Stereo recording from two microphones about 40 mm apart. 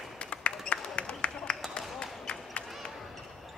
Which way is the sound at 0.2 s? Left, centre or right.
Left.